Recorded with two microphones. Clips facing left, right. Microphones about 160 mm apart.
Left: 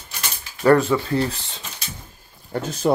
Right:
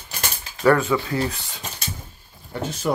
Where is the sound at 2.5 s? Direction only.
40° left (ahead or behind).